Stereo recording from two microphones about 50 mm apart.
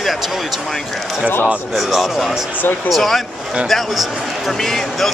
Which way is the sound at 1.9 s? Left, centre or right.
Centre.